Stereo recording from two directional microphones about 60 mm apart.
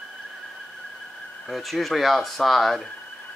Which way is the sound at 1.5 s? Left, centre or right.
Centre.